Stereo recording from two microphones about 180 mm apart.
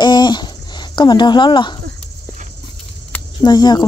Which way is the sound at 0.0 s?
25° left (ahead or behind).